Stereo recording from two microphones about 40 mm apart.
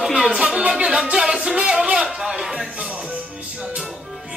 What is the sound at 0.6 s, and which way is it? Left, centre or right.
Music, right.